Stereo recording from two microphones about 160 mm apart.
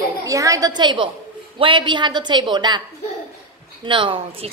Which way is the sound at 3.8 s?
30° right (ahead or behind).